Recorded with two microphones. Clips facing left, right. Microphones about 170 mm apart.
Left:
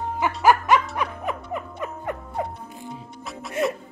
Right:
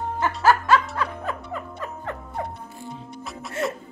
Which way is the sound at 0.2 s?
15° left (ahead or behind).